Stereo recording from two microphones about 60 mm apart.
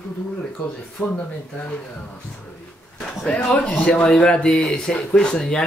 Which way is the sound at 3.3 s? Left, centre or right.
Centre.